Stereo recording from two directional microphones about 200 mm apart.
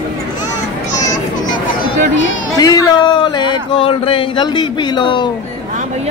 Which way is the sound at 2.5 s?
20° left (ahead or behind).